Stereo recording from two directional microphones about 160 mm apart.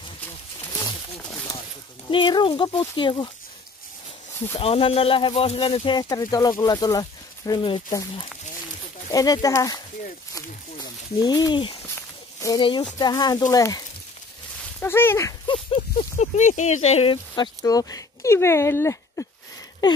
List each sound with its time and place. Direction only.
2.0 s speech: 30° left (ahead or behind)
4.6 s speech: 35° left (ahead or behind)
9.1 s speech: 25° left (ahead or behind)
15.4 s speech: 35° left (ahead or behind)
17.6 s speech: 20° left (ahead or behind)